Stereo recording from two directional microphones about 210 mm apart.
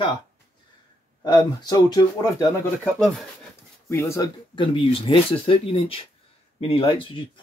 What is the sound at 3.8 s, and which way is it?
Speech, 15° left (ahead or behind).